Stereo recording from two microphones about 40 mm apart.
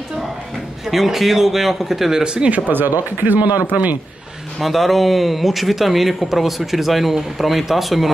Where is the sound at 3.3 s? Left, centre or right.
Right.